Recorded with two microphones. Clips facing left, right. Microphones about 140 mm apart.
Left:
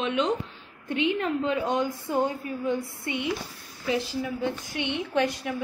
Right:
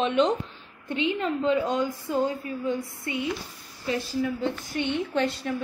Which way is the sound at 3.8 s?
15° left (ahead or behind).